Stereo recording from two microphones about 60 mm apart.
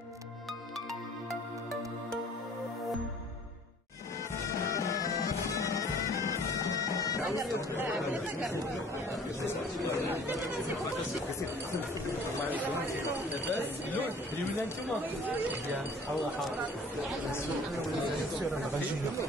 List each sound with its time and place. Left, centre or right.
4.6 s music: left
6.2 s bagpipes: left
12.4 s speech: right
15.0 s speech: right